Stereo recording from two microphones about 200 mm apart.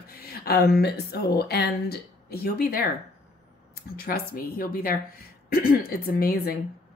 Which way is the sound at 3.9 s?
45° left (ahead or behind).